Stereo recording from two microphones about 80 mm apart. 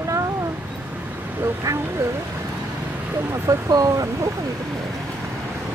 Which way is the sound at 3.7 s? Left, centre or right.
Right.